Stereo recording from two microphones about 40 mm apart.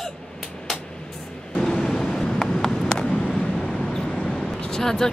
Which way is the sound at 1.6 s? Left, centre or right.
Centre.